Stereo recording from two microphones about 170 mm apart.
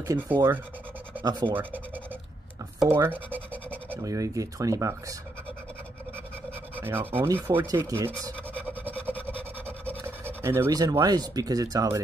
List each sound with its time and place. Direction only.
0.0 s rub: 15° right (ahead or behind)
2.9 s rub: 10° right (ahead or behind)
3.3 s scratch: 10° left (ahead or behind)
3.9 s speech: 20° right (ahead or behind)
6.7 s speech: 10° right (ahead or behind)
9.0 s a sound: 10° right (ahead or behind)
9.7 s speech: 10° right (ahead or behind)